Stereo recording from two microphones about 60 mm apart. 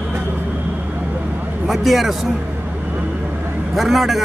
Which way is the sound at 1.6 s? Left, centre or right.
Centre.